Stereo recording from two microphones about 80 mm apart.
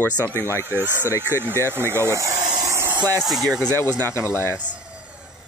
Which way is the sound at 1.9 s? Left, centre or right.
Right.